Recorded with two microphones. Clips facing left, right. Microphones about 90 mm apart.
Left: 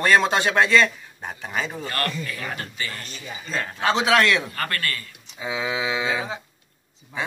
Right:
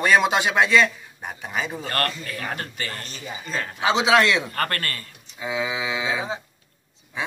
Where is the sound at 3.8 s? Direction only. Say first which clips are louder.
Right 1 dB; 15° right (ahead or behind).